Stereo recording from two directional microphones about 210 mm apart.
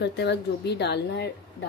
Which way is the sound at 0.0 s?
55° left (ahead or behind).